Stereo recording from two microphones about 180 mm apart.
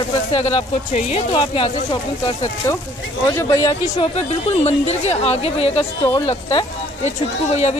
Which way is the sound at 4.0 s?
35° left (ahead or behind).